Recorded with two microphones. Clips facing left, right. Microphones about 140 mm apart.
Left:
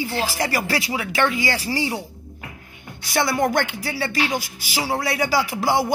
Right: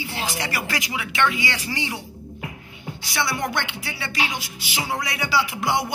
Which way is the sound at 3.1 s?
45° left (ahead or behind).